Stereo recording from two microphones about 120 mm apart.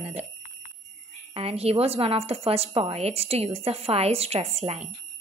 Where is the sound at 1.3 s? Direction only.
55° right (ahead or behind).